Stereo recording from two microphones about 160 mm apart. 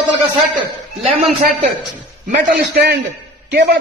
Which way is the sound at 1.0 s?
45° right (ahead or behind).